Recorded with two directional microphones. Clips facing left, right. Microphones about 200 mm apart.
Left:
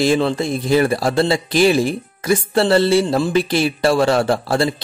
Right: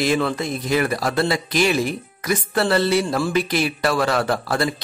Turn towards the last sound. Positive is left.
turn(degrees=30)  # may be behind; listen again after turning